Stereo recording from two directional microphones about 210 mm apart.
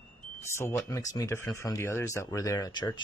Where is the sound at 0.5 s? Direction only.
10° left (ahead or behind).